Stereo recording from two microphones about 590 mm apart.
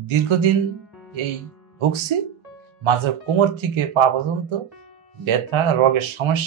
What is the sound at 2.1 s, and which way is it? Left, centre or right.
Speech, right.